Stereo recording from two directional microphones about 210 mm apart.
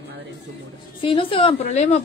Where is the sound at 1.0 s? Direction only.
25° left (ahead or behind).